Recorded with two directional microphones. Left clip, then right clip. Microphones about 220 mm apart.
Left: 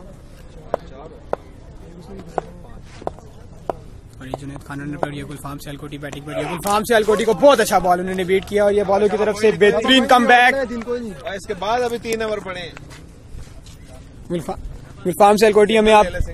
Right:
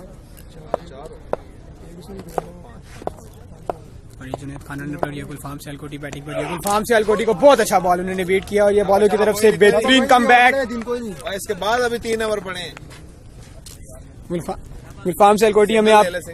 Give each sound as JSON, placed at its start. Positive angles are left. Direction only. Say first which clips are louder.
{"t": 0.7, "sound": "a sound", "louder": "even", "side_deg": 10}
{"t": 2.4, "sound": "a man's voice", "louder": "even", "side_deg": 10}
{"t": 3.7, "sound": "a sound", "louder": "left 1 dB", "side_deg": 10}
{"t": 4.2, "sound": "speech", "louder": "even", "side_deg": 5}
{"t": 6.3, "sound": "speech", "louder": "even", "side_deg": -5}
{"t": 6.6, "sound": "speech", "louder": "left 1 dB", "side_deg": 10}
{"t": 9.8, "sound": "a man's voice", "louder": "even", "side_deg": 5}
{"t": 10.9, "sound": "a man's voice", "louder": "even", "side_deg": -45}
{"t": 14.3, "sound": "speech", "louder": "even", "side_deg": 0}
{"t": 15.0, "sound": "a man's voice", "louder": "left 1 dB", "side_deg": 15}